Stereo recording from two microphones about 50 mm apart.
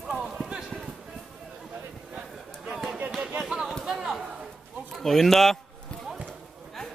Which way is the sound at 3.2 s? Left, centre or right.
Centre.